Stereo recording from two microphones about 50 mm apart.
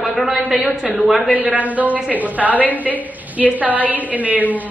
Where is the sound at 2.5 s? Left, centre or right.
Left.